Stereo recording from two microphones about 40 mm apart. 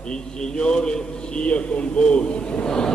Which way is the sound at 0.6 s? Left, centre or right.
Left.